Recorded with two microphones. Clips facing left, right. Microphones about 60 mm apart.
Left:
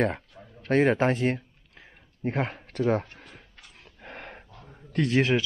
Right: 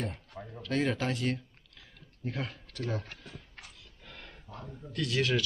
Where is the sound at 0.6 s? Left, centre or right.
Left.